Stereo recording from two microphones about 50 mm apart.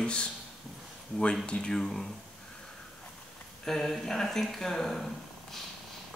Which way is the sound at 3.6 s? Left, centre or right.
Centre.